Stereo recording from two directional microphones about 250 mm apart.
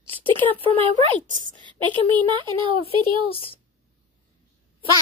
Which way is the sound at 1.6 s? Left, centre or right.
Centre.